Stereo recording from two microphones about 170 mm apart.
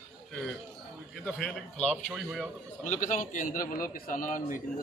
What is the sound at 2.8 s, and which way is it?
A man's voice, 45° left (ahead or behind).